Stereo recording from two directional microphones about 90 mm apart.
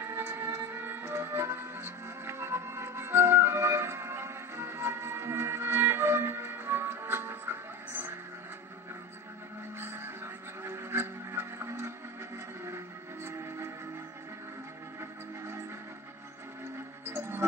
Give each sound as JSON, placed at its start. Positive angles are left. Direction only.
{"t": 0.0, "sound": "music", "side_deg": -30}
{"t": 9.8, "sound": "music", "side_deg": -30}
{"t": 15.0, "sound": "music", "side_deg": -30}
{"t": 17.1, "sound": "music", "side_deg": -30}